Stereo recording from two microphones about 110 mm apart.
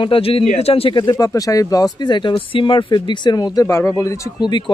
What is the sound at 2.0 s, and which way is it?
Speech, 45° left (ahead or behind).